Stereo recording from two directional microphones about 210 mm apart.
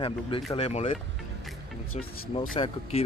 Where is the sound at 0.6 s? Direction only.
30° left (ahead or behind).